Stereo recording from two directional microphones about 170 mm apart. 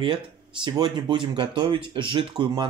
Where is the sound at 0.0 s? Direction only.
30° right (ahead or behind).